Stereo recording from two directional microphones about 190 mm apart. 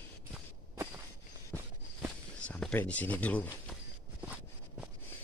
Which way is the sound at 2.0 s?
5° left (ahead or behind).